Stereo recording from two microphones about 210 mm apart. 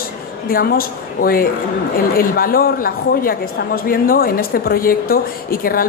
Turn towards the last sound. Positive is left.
turn(degrees=45)  # may be behind; listen again after turning